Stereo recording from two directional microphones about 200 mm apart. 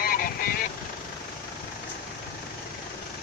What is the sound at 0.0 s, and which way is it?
Vehicle, 45° left (ahead or behind).